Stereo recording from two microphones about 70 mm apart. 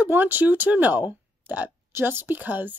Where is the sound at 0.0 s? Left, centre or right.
Right.